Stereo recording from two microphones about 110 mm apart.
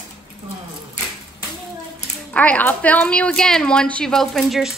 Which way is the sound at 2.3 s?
15° left (ahead or behind).